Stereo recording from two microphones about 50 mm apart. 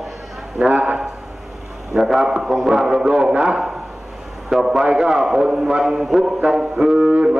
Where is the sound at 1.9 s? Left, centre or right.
Centre.